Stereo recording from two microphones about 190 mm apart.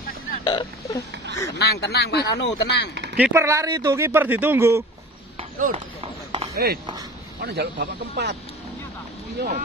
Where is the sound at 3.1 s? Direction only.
10° right (ahead or behind).